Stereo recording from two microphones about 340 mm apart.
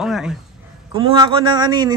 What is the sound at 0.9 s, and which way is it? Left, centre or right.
Speech, centre.